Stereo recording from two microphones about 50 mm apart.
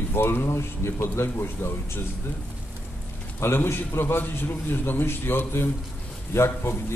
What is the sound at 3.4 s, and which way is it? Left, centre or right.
A man's voice, left.